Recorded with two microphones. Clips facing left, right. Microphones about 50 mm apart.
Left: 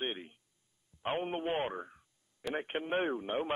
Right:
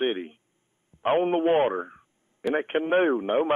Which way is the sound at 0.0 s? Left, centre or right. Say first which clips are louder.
Right 12 dB; right.